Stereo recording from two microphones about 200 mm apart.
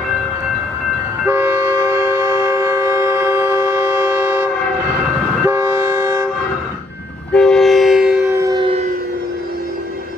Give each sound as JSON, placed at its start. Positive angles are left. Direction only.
{"t": 1.2, "sound": "train", "side_deg": -10}
{"t": 7.3, "sound": "train", "side_deg": 0}
{"t": 8.3, "sound": "civil defense siren", "side_deg": -15}